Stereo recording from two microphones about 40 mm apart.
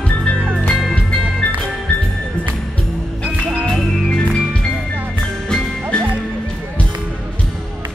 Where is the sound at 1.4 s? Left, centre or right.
Left.